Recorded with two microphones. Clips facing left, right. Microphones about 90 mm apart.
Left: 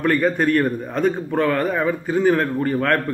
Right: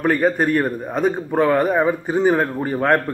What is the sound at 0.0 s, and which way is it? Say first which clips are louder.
Speech: right 1 dB; 15° right (ahead or behind).